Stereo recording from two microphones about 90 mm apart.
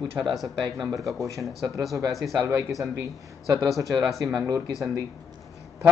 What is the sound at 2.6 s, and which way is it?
Speech, 40° right (ahead or behind).